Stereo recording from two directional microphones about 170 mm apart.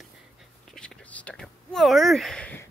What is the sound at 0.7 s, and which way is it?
Whispering, 5° left (ahead or behind).